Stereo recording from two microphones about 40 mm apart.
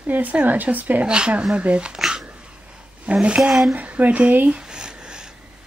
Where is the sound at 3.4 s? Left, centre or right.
Centre.